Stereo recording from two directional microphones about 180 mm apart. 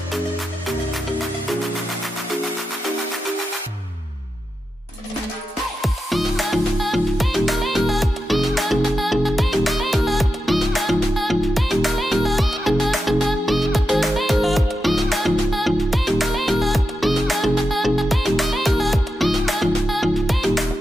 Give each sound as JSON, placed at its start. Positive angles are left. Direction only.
{"t": 5.8, "sound": "music", "side_deg": 0}